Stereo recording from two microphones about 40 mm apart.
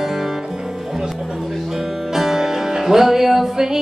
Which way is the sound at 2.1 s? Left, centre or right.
Centre.